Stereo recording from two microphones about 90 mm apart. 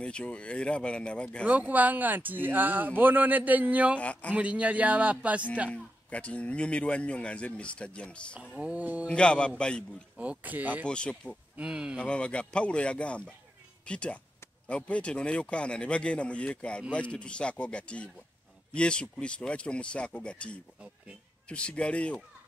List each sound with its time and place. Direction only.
0.0 s speech: 10° left (ahead or behind)
1.4 s speech: 15° right (ahead or behind)
4.0 s speech: 15° left (ahead or behind)
4.3 s a man's voice: 15° right (ahead or behind)
5.7 s speech: 15° left (ahead or behind)
8.4 s a man's voice: 15° right (ahead or behind)
9.0 s speech: 10° left (ahead or behind)
10.1 s speech: 10° right (ahead or behind)
10.9 s speech: 10° left (ahead or behind)
11.5 s a man's voice: 10° right (ahead or behind)
12.0 s speech: 10° left (ahead or behind)